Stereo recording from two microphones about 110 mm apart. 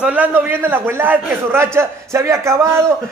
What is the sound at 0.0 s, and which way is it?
A man's voice, 15° right (ahead or behind).